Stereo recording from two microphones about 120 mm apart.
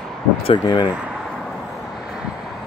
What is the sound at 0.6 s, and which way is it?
Speech, 40° left (ahead or behind).